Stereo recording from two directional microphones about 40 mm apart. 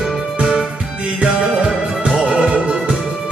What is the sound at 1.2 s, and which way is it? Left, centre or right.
Music, right.